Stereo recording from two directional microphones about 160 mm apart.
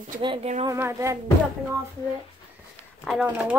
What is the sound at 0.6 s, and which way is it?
Speech, 20° right (ahead or behind).